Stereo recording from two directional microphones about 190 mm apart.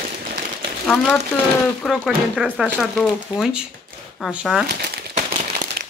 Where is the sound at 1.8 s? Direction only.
Centre (ahead or behind).